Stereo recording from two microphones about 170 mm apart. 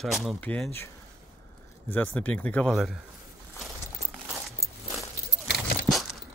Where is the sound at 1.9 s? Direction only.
10° left (ahead or behind).